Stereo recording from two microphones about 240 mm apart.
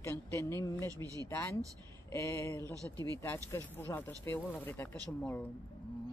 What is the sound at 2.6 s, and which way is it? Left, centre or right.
Speech, centre.